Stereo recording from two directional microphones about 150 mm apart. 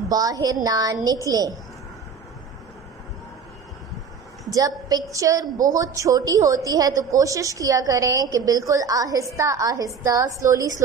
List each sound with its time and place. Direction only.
0.1 s a woman's voice: 25° right (ahead or behind)
4.6 s a woman's voice: 25° right (ahead or behind)